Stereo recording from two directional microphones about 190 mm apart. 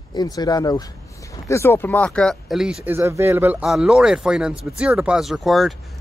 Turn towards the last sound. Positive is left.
turn(degrees=0)  # may be behind; listen again after turning